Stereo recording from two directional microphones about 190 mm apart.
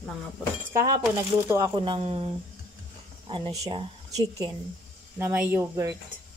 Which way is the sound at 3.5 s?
15° right (ahead or behind).